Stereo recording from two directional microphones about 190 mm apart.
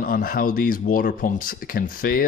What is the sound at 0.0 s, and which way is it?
Speech, 50° left (ahead or behind).